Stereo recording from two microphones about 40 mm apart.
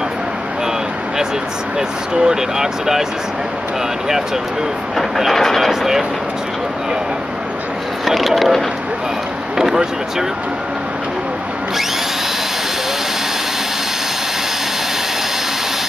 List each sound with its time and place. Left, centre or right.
1.8 s speech: centre
4.9 s speech: centre
5.7 s speech: centre
8.0 s speech: centre
9.6 s speech: centre